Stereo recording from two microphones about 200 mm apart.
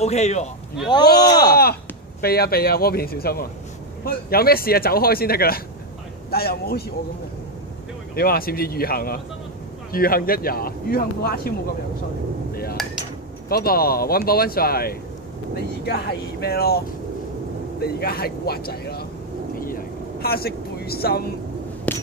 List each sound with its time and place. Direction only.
0.0 s a man's voice: 35° left (ahead or behind)
0.8 s speech: 20° left (ahead or behind)
2.2 s speech: 50° left (ahead or behind)
8.1 s speech: 50° left (ahead or behind)
13.5 s speech: 50° left (ahead or behind)
19.6 s vehicle: 50° left (ahead or behind)
21.9 s a sound: 10° left (ahead or behind)